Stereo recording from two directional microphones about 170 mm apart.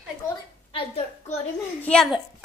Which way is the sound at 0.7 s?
35° left (ahead or behind).